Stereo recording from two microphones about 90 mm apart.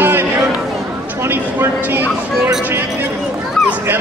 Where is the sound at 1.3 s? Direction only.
25° right (ahead or behind).